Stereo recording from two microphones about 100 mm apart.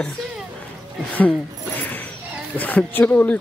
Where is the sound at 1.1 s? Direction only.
15° left (ahead or behind).